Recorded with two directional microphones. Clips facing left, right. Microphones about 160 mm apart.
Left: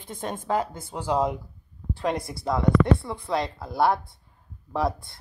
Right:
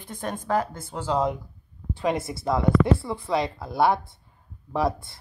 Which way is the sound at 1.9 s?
Centre (ahead or behind).